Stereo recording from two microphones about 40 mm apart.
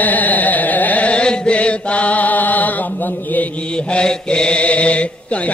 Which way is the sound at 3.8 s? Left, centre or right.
Left.